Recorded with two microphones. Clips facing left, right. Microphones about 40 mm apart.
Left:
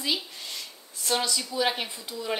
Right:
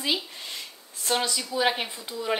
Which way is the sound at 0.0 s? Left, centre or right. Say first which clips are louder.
Right 2 dB; right.